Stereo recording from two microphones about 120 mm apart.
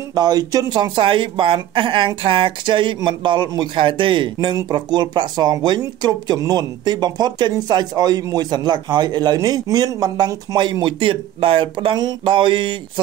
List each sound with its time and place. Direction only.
0.1 s speech: 35° right (ahead or behind)